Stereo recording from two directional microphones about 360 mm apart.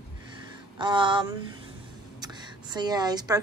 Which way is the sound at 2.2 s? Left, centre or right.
Centre.